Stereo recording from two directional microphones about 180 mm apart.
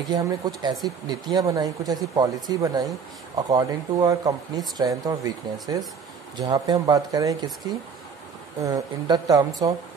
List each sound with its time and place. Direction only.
0.1 s speech: 20° right (ahead or behind)